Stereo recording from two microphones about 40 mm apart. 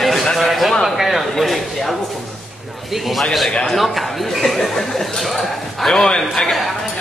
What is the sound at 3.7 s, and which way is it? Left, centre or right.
A man's voice, centre.